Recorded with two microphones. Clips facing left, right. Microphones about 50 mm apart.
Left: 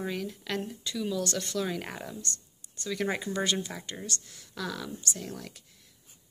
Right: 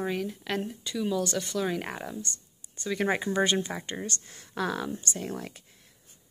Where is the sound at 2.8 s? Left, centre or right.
Right.